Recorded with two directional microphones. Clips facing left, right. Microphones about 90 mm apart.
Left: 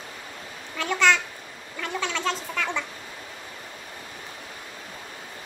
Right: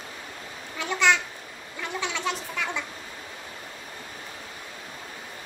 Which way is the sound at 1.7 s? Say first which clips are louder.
Left 2 dB; 15° right (ahead or behind).